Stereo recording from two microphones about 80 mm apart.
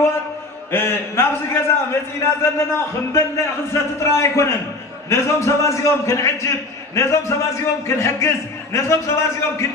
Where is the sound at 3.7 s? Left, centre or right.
Left.